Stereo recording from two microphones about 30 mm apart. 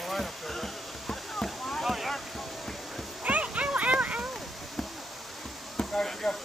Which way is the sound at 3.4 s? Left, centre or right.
Right.